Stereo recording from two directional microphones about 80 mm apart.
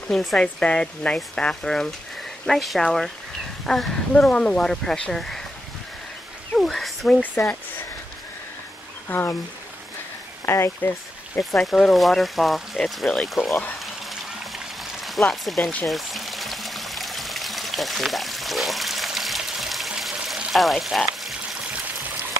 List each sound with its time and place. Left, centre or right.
0.1 s speech: centre
0.4 s speech: centre
6.6 s a sound: centre
7.4 s speech: left
9.1 s speech: left
10.4 s speech: left
11.3 s speech: centre
15.4 s speech: centre
15.9 s pour: centre